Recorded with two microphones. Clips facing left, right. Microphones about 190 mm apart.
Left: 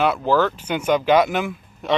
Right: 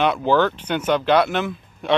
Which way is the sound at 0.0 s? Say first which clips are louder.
Right 1 dB; centre (ahead or behind).